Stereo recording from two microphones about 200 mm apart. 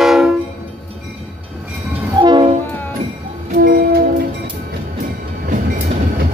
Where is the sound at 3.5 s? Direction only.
50° right (ahead or behind).